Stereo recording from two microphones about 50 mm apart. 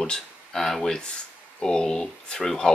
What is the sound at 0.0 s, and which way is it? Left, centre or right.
Speech, centre.